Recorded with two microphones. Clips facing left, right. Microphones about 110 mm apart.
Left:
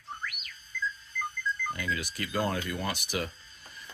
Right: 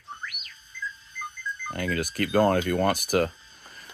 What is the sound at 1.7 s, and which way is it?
Speech, 55° right (ahead or behind).